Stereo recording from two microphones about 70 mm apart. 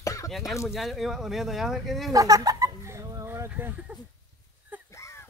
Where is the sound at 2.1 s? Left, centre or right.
Right.